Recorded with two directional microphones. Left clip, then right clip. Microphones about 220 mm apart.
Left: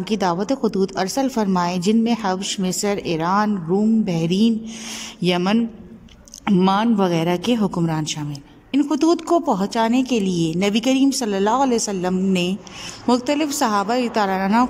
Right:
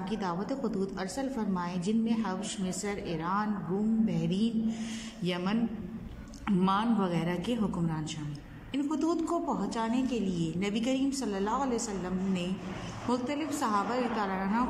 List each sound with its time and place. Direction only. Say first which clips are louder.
0.0 s a woman's voice: left 13 dB; 50° left (ahead or behind)